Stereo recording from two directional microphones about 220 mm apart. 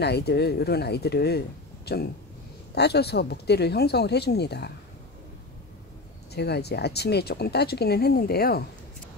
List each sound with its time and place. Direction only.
0.0 s speech: 50° left (ahead or behind)
6.3 s speech: 50° left (ahead or behind)